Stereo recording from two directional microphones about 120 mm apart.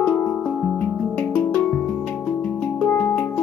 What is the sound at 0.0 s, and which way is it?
Music, 15° left (ahead or behind).